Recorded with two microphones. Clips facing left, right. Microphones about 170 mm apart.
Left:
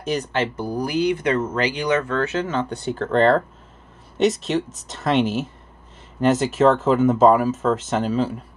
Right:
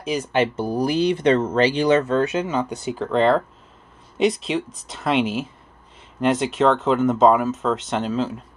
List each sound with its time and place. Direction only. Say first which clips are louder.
0.0 s speech: left 1 dB; centre (ahead or behind)
0.3 s speech: right 3 dB; 15° right (ahead or behind); by 8.4 s 5° left (ahead or behind)